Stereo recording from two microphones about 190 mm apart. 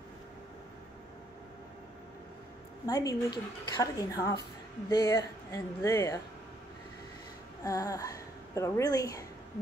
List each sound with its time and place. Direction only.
2.9 s a woman's voice: 20° left (ahead or behind)
7.6 s a woman's voice: 15° left (ahead or behind)